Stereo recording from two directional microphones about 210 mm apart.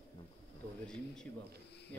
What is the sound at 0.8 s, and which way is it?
Speech, 5° left (ahead or behind).